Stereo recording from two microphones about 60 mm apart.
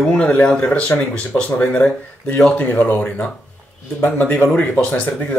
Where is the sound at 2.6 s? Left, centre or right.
Left.